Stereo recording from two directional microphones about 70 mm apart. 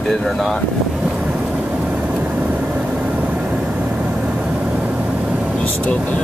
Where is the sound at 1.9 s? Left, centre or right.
Centre.